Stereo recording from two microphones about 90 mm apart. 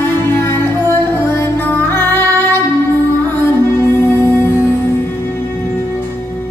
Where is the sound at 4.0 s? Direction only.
25° left (ahead or behind).